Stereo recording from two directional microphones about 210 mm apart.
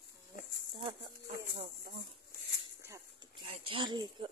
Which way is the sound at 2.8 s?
15° right (ahead or behind).